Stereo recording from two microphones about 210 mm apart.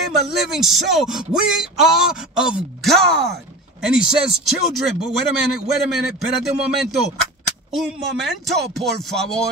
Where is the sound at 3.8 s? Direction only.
Centre (ahead or behind).